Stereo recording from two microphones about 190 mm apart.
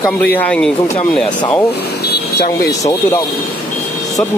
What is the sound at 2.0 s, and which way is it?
Vehicle, 60° left (ahead or behind).